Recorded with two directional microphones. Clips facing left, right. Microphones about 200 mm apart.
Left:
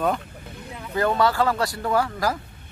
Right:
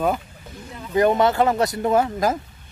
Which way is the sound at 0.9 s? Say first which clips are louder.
Right 4 dB; 20° right (ahead or behind).